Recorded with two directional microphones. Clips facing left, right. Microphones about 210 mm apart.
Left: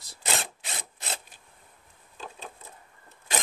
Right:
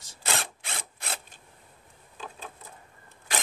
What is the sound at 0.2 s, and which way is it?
Rub, 20° left (ahead or behind).